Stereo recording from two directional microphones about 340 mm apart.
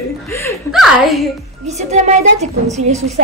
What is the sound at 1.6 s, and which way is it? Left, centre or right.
Speech, centre.